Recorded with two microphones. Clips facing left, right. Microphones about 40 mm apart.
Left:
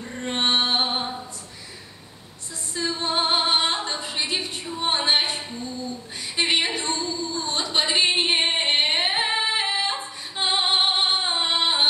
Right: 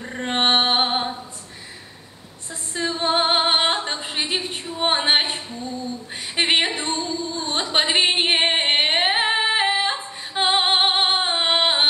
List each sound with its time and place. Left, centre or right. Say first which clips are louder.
0.0 s music: right 4 dB; right
2.7 s female singing: right 4 dB; right
6.3 s a sound: right 3 dB; right